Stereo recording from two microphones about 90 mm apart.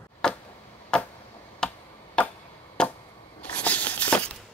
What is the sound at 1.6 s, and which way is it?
Tick-tock, 10° left (ahead or behind).